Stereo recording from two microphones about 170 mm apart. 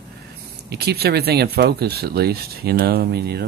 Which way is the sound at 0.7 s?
70° right (ahead or behind).